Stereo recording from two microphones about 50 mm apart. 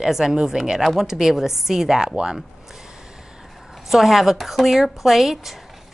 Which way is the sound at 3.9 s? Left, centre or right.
Centre.